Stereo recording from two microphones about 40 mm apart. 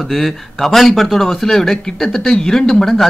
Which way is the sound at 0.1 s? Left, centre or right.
Centre.